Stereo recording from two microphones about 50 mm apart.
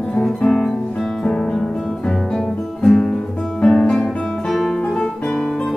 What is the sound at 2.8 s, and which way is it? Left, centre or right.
Music, centre.